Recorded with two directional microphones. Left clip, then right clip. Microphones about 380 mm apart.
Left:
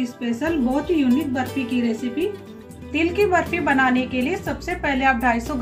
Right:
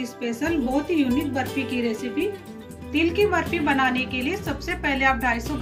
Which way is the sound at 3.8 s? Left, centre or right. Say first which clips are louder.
Left 3 dB; centre.